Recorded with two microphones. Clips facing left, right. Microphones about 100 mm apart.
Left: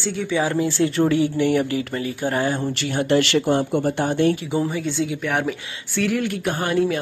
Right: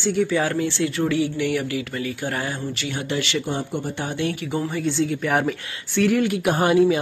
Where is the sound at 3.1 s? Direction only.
55° left (ahead or behind).